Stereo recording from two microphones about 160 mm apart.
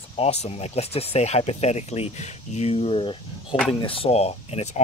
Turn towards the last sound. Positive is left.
turn(degrees=40)  # may be behind; listen again after turning